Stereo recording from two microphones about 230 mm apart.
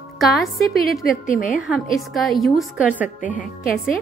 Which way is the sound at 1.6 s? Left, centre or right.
Centre.